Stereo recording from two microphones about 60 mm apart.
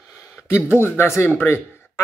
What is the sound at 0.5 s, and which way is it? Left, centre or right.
Speech, left.